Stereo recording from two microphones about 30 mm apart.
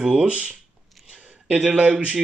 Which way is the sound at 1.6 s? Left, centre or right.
Right.